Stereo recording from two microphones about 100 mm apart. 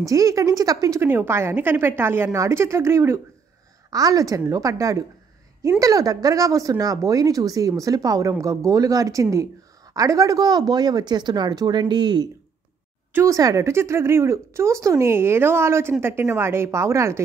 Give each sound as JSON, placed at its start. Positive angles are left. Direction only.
{"t": 0.0, "sound": "speech", "side_deg": -35}
{"t": 3.9, "sound": "speech", "side_deg": -35}
{"t": 13.1, "sound": "speech", "side_deg": -30}